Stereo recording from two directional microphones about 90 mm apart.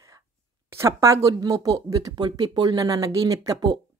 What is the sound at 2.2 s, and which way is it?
Speech, 55° right (ahead or behind).